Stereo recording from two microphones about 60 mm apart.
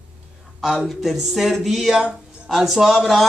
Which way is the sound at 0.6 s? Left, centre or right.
Centre.